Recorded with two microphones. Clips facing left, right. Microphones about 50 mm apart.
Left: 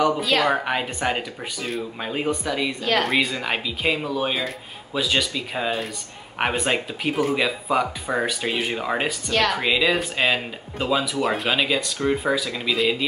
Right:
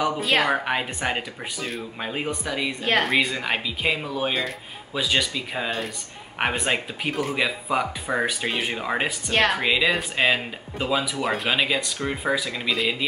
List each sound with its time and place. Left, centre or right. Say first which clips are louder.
0.5 s speech: left 1 dB; centre
9.3 s speech: right 1 dB; right
9.6 s speech: left 1 dB; centre